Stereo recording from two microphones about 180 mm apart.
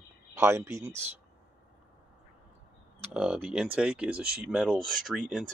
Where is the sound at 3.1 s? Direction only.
5° right (ahead or behind).